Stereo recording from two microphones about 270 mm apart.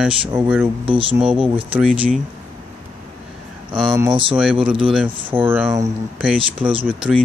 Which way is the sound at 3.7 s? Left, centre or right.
Centre.